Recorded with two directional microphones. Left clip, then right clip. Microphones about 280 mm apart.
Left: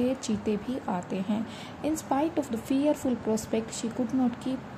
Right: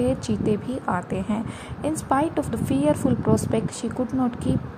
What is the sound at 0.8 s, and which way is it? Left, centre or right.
A woman's voice, centre.